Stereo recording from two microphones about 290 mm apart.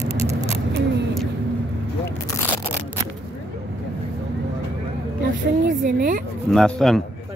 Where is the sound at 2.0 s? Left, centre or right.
Centre.